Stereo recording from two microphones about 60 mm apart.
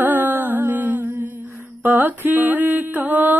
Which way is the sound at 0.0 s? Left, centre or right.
Right.